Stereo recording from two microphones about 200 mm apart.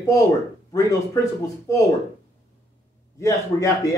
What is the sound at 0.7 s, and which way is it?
Speech, 15° left (ahead or behind).